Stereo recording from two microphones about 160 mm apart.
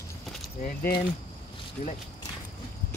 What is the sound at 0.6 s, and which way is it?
Speech, 75° left (ahead or behind).